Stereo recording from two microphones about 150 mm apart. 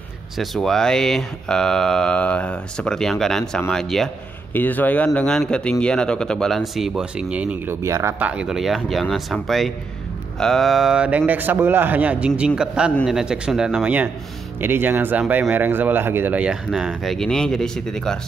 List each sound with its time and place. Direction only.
0.4 s a man's voice: centre (ahead or behind)